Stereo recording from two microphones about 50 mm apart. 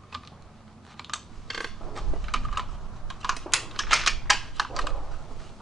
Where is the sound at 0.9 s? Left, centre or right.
Centre.